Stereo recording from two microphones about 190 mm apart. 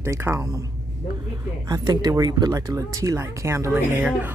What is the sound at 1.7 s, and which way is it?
Speech, 20° right (ahead or behind).